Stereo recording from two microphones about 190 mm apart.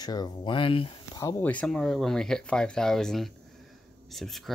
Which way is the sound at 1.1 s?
15° left (ahead or behind).